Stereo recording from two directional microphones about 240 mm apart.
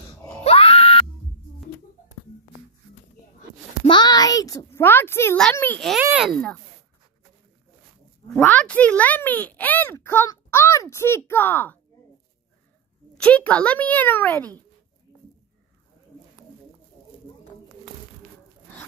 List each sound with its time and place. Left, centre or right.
0.4 s screaming: left
3.8 s a child's voice: centre
8.4 s speech: centre
13.2 s speech: centre